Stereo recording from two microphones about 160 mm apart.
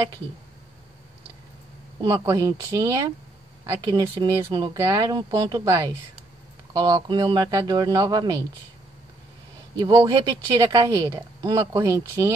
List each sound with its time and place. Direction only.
2.0 s speech: 20° right (ahead or behind)
4.5 s speech: 30° right (ahead or behind)
9.8 s speech: 25° right (ahead or behind)